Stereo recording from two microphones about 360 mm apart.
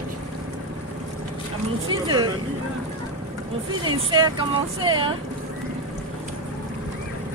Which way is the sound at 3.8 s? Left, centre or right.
Centre.